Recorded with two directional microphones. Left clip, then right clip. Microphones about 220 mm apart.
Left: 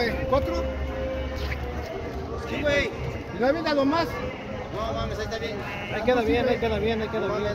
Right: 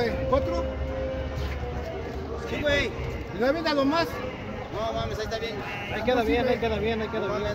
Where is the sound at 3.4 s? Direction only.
50° right (ahead or behind).